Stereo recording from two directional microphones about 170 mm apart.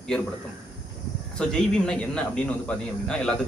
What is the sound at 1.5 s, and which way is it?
A man's voice, 5° left (ahead or behind).